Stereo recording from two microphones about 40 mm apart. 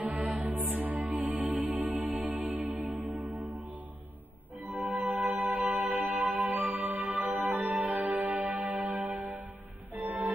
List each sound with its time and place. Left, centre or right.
0.0 s music: right
4.6 s music: right
7.4 s music: right